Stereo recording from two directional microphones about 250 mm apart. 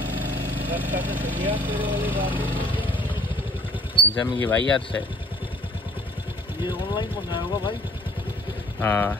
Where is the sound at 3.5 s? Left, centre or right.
Left.